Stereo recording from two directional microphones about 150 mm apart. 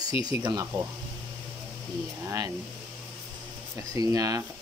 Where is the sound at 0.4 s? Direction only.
30° right (ahead or behind).